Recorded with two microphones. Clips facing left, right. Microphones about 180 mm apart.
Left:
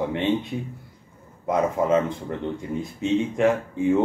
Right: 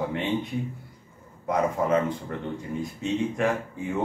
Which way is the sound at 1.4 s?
20° left (ahead or behind).